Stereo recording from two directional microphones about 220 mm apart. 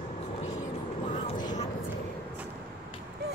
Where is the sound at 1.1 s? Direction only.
35° left (ahead or behind).